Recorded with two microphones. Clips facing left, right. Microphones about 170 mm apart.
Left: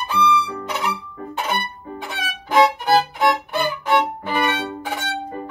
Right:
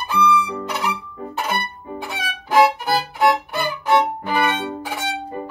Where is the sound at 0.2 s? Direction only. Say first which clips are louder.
Right 1 dB; centre (ahead or behind).